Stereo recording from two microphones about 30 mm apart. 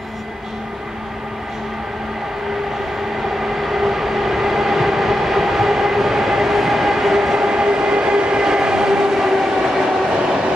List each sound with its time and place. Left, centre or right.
3.3 s train: centre
7.5 s train: right